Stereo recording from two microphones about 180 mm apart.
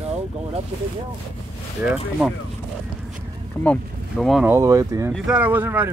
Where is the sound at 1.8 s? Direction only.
5° right (ahead or behind).